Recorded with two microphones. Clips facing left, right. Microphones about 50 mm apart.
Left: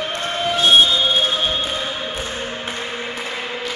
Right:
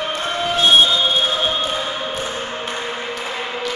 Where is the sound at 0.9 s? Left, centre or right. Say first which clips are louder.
Even; centre.